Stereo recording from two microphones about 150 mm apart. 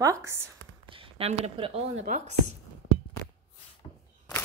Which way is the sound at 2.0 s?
60° right (ahead or behind).